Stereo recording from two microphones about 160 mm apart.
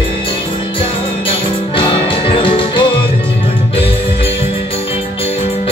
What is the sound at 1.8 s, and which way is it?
Music, 30° left (ahead or behind).